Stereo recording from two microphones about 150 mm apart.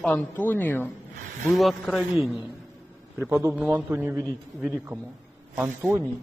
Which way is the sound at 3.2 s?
15° right (ahead or behind).